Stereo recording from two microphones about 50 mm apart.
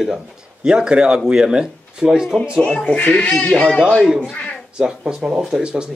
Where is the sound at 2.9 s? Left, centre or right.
Left.